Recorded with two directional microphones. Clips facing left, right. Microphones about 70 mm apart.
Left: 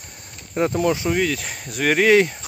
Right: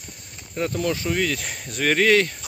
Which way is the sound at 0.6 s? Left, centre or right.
Left.